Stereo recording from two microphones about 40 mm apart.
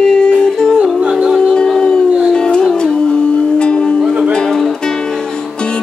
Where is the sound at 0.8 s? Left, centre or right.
Right.